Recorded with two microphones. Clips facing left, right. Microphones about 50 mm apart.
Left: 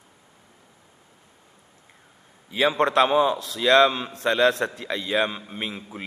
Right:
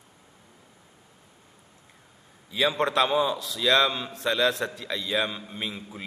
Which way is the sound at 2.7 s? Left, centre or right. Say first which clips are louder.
Left 5 dB; left.